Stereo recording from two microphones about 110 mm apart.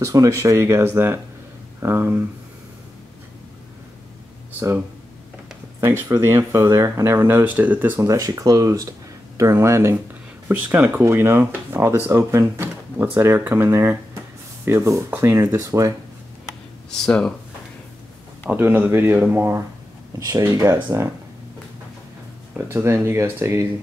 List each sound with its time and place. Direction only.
0.0 s speech: 30° right (ahead or behind)
4.6 s speech: 20° right (ahead or behind)
7.2 s speech: 20° right (ahead or behind)
8.1 s speech: 30° right (ahead or behind)
16.9 s speech: 5° left (ahead or behind)
18.5 s speech: 20° right (ahead or behind)
22.7 s speech: 25° right (ahead or behind)